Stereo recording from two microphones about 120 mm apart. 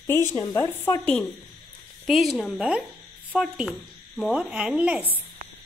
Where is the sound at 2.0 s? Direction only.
Centre (ahead or behind).